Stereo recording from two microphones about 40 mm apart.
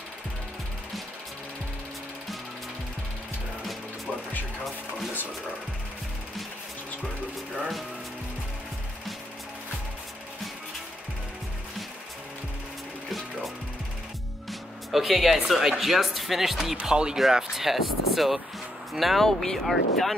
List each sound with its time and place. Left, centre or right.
4.1 s music: left
14.5 s music: centre
15.7 s speech: centre
16.8 s speech: centre
19.2 s speech: centre